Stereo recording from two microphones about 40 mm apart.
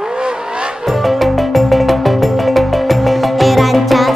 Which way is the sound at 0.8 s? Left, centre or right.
Centre.